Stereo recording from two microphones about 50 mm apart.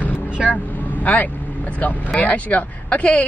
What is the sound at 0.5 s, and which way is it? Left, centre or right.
A woman's voice, left.